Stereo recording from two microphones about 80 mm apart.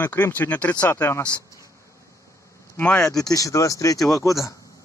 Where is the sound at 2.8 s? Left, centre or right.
Centre.